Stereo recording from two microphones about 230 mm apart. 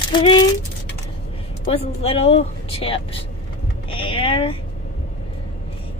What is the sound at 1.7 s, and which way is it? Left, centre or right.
A woman's voice, left.